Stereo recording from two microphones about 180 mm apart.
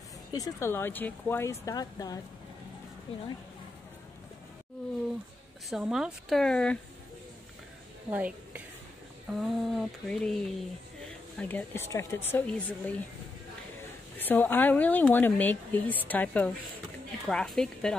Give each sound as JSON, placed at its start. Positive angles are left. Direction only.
{"t": 0.3, "sound": "speech", "side_deg": 15}
{"t": 5.7, "sound": "a woman's voice", "side_deg": 0}
{"t": 8.1, "sound": "a woman's voice", "side_deg": -10}
{"t": 14.1, "sound": "a woman's voice", "side_deg": 10}